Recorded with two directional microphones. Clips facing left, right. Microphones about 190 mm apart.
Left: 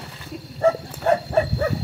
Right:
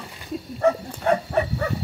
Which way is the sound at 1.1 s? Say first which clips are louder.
Left 2 dB; 50° left (ahead or behind).